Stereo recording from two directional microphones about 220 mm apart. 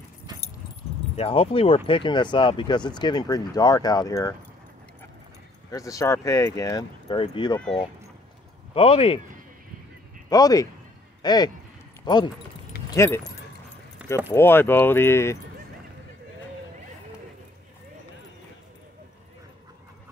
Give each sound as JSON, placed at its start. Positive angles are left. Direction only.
{"t": 1.1, "sound": "speech", "side_deg": 25}
{"t": 5.7, "sound": "speech", "side_deg": 15}
{"t": 7.5, "sound": "speech", "side_deg": 5}
{"t": 8.7, "sound": "speech", "side_deg": 25}
{"t": 10.3, "sound": "speech", "side_deg": 15}
{"t": 12.9, "sound": "speech", "side_deg": 15}
{"t": 14.0, "sound": "keys jangling", "side_deg": -5}
{"t": 14.3, "sound": "speech", "side_deg": 10}